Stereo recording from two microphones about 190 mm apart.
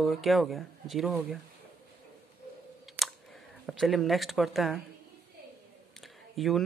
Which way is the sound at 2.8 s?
Centre (ahead or behind).